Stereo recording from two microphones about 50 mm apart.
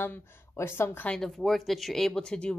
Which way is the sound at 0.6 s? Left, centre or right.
Left.